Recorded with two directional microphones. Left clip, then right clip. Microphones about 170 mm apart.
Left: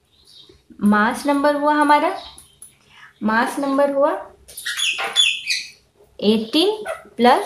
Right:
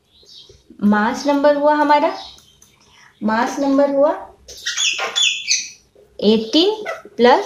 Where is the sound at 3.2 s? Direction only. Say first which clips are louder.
Right 1 dB; centre (ahead or behind).